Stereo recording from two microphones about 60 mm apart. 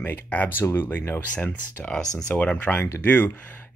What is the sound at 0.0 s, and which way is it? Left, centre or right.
Speech, left.